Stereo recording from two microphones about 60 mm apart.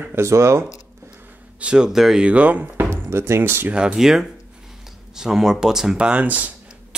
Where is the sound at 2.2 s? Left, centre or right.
Right.